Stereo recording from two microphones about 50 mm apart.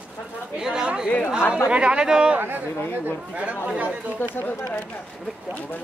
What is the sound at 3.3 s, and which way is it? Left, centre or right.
Speech, right.